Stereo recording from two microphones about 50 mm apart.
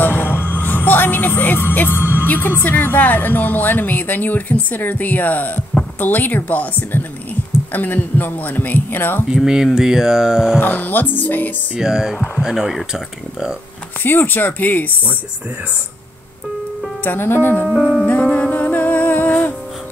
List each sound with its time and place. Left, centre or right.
0.0 s music: left
2.2 s a woman's voice: left
9.3 s speech: centre
10.6 s speech: left
11.8 s speech: centre
14.0 s speech: left
17.0 s speech: left
18.3 s music: left